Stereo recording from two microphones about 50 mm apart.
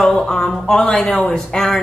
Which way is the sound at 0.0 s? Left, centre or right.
Centre.